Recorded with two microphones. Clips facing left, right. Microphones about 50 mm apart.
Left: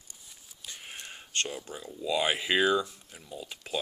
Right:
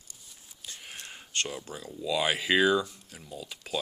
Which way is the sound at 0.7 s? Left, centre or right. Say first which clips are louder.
Even; centre.